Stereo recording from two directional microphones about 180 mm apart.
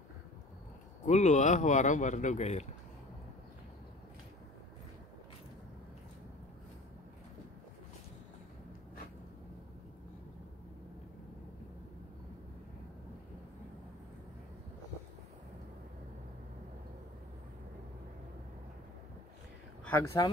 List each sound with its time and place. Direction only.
1.0 s speech: 40° left (ahead or behind)
19.8 s speech: 10° left (ahead or behind)